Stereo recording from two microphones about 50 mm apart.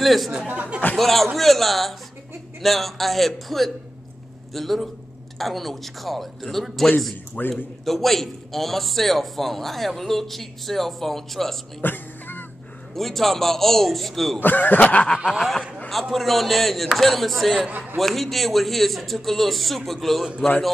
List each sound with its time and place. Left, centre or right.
0.0 s a man's voice: centre
0.5 s speech: right
0.9 s a man's voice: centre
7.3 s speech: left
7.8 s a man's voice: centre
11.8 s music: left
12.9 s a man's voice: centre
14.4 s speech: left
15.3 s a man's voice: centre
17.6 s a man's voice: right
17.9 s a man's voice: centre